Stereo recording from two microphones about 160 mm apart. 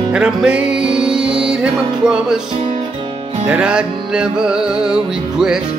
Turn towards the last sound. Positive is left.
turn(degrees=-5)  # may be behind; listen again after turning